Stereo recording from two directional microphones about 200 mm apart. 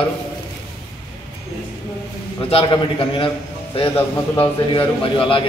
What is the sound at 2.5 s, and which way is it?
Speech, 25° left (ahead or behind).